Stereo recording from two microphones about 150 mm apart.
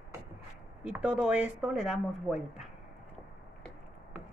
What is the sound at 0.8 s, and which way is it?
Speech, 5° right (ahead or behind).